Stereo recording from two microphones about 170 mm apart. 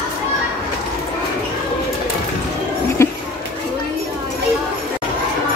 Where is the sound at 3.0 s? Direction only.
15° left (ahead or behind).